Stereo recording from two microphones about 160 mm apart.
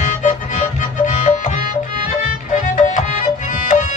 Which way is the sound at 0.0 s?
50° left (ahead or behind).